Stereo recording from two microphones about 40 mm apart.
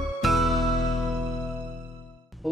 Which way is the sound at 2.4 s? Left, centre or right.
Centre.